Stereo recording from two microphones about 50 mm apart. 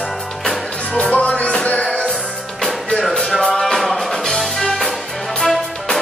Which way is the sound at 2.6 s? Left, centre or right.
Centre.